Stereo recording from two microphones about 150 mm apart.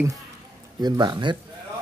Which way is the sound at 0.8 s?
30° right (ahead or behind).